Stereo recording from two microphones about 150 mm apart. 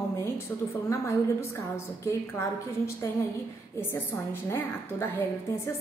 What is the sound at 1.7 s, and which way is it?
A woman's voice, 20° left (ahead or behind).